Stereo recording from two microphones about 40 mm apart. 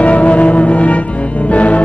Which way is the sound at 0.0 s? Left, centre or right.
Left.